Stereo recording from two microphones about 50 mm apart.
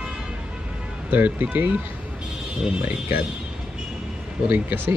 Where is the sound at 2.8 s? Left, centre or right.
Right.